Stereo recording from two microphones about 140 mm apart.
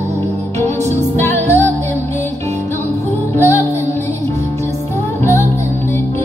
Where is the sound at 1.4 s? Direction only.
55° right (ahead or behind).